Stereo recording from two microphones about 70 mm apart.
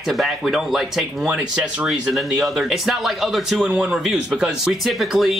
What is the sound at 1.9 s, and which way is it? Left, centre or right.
Speech, centre.